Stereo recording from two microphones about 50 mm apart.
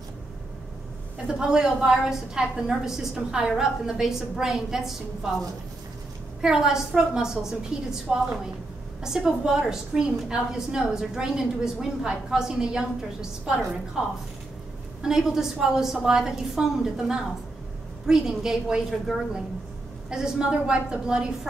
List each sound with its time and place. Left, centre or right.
1.1 s a woman's voice: centre
6.4 s a woman's voice: centre